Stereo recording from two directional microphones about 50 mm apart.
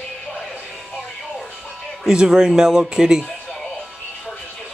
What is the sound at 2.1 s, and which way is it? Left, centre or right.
Speech, centre.